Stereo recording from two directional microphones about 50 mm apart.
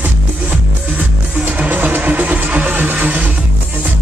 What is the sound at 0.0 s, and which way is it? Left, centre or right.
Music, right.